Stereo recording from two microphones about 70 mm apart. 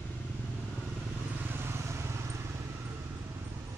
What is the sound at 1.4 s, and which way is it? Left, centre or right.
Vehicle, right.